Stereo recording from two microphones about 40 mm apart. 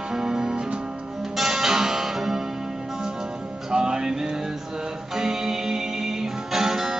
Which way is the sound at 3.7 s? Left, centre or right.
Centre.